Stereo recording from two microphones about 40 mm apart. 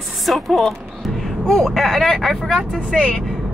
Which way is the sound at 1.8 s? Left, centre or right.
Centre.